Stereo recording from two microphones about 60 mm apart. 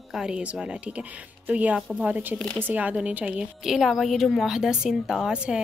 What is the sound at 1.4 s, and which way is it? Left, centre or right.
A woman's voice, right.